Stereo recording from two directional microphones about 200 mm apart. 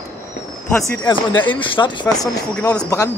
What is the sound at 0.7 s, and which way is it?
Speech, 15° left (ahead or behind).